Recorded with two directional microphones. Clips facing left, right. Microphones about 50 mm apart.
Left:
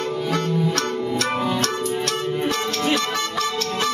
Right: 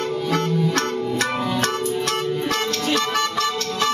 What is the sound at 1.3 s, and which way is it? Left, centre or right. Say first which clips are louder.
Music: left 1 dB; centre.